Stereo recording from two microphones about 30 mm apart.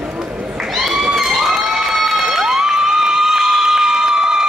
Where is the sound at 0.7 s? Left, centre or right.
Centre.